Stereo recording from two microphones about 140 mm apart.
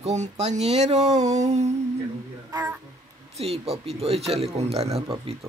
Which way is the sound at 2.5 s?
25° right (ahead or behind).